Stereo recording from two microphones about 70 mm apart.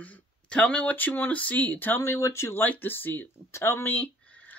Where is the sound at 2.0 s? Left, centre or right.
Left.